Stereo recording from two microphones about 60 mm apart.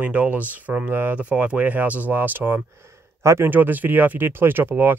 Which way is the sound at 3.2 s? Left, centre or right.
Right.